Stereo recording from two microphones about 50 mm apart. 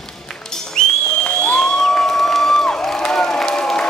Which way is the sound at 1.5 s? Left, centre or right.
Centre.